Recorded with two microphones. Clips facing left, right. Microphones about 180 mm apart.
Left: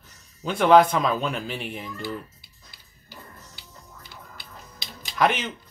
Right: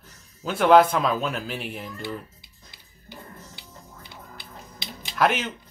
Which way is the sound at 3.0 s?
20° right (ahead or behind).